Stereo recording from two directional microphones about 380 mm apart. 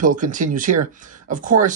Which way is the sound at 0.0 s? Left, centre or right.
Right.